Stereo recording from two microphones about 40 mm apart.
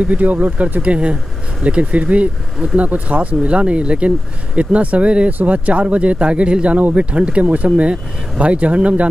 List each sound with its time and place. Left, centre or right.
0.0 s speech: right